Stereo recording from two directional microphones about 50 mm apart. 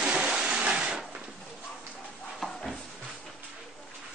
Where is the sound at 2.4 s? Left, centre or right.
Centre.